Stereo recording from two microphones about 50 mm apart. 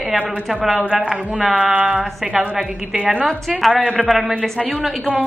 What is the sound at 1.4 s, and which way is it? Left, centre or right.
Speech, centre.